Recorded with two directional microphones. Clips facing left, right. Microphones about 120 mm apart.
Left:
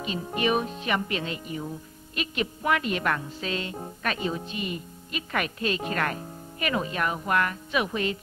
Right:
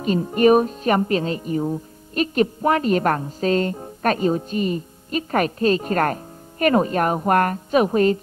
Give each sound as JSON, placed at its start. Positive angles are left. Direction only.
{"t": 0.4, "sound": "speech", "side_deg": -45}